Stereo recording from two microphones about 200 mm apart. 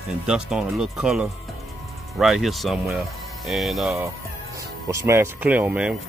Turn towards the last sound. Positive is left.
turn(degrees=-5)  # may be behind; listen again after turning